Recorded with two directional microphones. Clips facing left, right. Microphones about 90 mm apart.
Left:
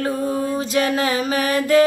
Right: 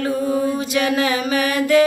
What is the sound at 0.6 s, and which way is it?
Mantra, 35° left (ahead or behind).